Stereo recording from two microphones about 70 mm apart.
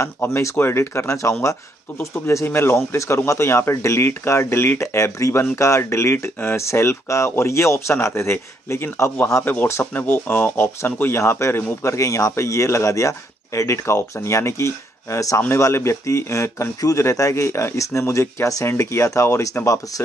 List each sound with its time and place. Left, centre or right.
0.2 s speech: left
2.4 s speech: left